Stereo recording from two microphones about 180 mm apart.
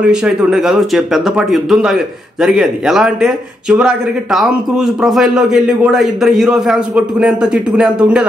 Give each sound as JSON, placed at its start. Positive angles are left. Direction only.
{"t": 0.0, "sound": "speech", "side_deg": -5}